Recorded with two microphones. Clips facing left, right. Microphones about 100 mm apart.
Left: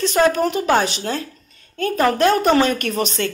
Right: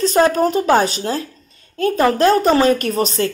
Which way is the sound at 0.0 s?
35° right (ahead or behind).